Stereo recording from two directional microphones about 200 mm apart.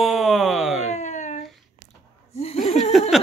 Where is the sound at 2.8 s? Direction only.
Centre (ahead or behind).